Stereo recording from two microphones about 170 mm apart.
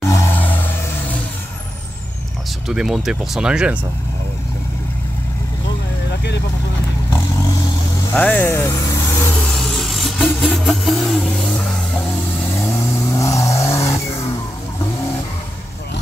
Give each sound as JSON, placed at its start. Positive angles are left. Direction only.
{"t": 0.0, "sound": "vehicle", "side_deg": 15}
{"t": 2.7, "sound": "speech", "side_deg": -5}
{"t": 8.1, "sound": "speech", "side_deg": 10}
{"t": 9.3, "sound": "vehicle", "side_deg": 5}
{"t": 13.1, "sound": "vehicle", "side_deg": 20}